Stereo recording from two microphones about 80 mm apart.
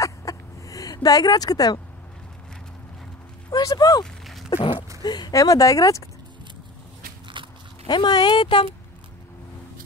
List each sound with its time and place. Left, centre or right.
0.0 s a sound: left
3.4 s speech: left
4.0 s a sound: centre
5.0 s speech: left
5.3 s speech: left
7.3 s biting: right
7.8 s speech: left